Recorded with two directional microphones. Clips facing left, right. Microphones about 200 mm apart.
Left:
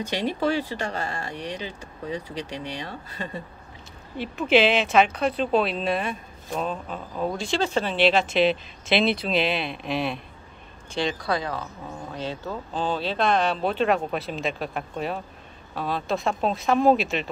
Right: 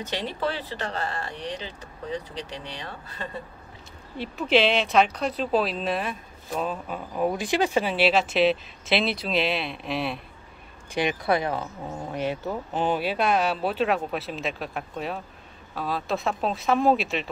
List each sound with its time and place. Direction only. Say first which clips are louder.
0.0 s speech: left 4 dB; 10° left (ahead or behind)
4.2 s speech: left 2 dB; centre (ahead or behind)
11.0 s speech: right 2 dB; 20° right (ahead or behind); by 17.3 s centre (ahead or behind)